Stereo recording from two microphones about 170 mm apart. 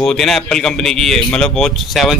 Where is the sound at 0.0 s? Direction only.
5° left (ahead or behind).